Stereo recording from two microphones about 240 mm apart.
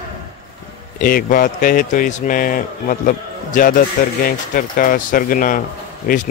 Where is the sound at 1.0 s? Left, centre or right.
Left.